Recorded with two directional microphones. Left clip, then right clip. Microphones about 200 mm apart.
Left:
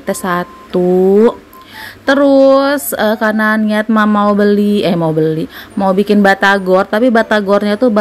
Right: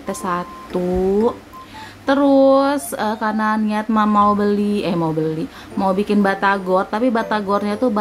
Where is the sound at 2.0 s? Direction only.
20° left (ahead or behind).